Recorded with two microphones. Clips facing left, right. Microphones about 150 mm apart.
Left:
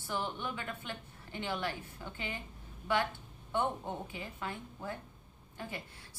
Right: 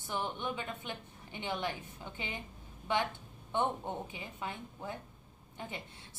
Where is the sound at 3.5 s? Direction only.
20° right (ahead or behind).